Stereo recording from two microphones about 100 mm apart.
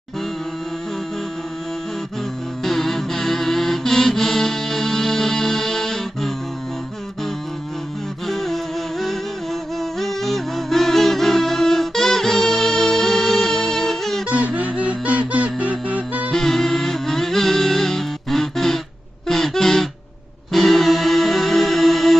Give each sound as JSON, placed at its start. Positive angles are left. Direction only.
{"t": 2.6, "sound": "music", "side_deg": 0}
{"t": 8.3, "sound": "humming", "side_deg": 0}
{"t": 9.9, "sound": "music", "side_deg": 0}
{"t": 14.3, "sound": "music", "side_deg": -15}
{"t": 16.3, "sound": "music", "side_deg": 5}